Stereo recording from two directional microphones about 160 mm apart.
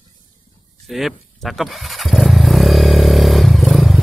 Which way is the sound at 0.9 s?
Centre (ahead or behind).